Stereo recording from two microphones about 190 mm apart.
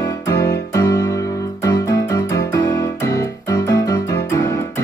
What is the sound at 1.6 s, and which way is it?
Keyboard, 20° left (ahead or behind).